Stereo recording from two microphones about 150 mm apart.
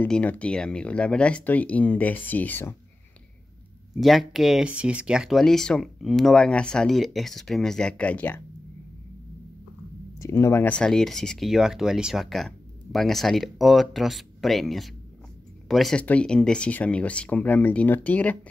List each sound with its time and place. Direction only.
0.0 s speech: 10° left (ahead or behind)
3.9 s speech: centre (ahead or behind)
10.2 s speech: 20° left (ahead or behind)